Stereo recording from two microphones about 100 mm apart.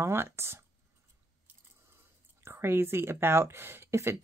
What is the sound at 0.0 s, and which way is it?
Speech, 25° right (ahead or behind).